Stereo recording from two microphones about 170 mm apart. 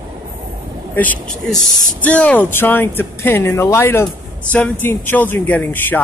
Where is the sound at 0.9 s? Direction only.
10° left (ahead or behind).